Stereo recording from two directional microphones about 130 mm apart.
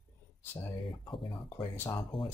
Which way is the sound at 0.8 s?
40° left (ahead or behind).